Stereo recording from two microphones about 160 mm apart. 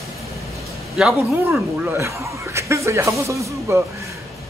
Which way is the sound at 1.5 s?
15° right (ahead or behind).